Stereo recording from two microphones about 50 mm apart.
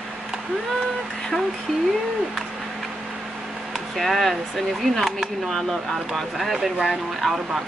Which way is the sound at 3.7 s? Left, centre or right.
Centre.